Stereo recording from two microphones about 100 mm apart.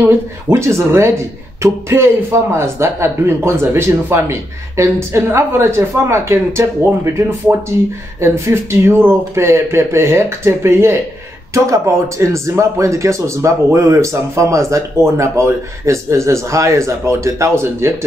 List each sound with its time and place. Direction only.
0.5 s speech: 25° right (ahead or behind)